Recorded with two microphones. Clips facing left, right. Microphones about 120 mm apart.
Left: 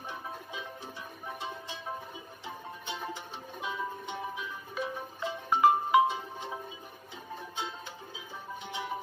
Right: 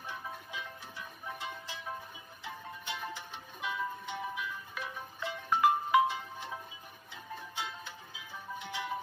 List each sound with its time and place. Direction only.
0.1 s music: 25° left (ahead or behind)
8.5 s music: 25° left (ahead or behind)